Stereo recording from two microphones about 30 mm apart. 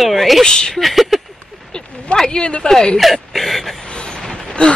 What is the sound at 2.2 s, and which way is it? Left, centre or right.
Speech, left.